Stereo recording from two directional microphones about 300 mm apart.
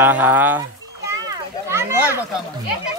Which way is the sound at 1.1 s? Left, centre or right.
Centre.